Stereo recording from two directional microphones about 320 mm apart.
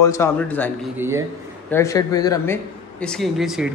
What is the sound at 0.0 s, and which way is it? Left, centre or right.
Speech, centre.